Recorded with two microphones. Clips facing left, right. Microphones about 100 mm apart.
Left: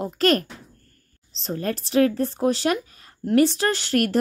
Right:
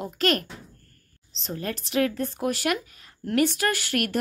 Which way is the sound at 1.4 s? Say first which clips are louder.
Left 5 dB; 35° left (ahead or behind).